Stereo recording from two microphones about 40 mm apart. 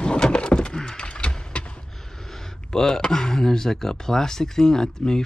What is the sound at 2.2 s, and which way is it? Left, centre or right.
Speech, centre.